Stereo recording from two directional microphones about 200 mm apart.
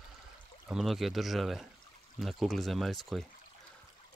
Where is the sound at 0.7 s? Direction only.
Centre (ahead or behind).